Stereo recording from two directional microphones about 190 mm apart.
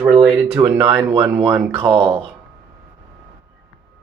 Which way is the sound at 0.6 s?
15° right (ahead or behind).